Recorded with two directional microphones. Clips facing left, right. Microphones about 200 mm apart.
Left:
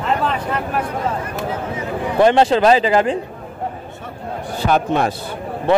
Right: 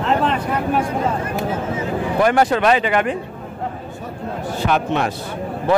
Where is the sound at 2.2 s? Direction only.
25° left (ahead or behind).